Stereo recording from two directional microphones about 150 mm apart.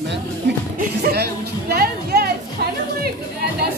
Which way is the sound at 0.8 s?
90° right.